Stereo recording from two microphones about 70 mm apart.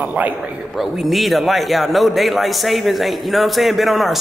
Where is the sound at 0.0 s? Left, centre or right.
Right.